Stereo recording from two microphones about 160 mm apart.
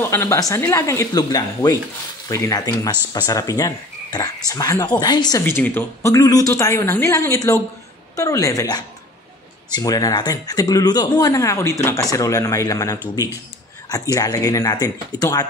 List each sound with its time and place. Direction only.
0.0 s speech: 15° left (ahead or behind)
5.4 s speech: 10° left (ahead or behind)